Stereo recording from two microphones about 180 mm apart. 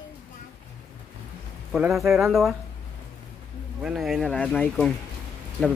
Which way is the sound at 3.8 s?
Centre (ahead or behind).